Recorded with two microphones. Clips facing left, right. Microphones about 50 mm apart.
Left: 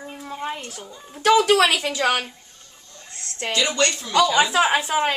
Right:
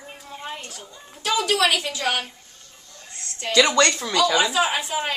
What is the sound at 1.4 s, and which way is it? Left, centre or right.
Speech, left.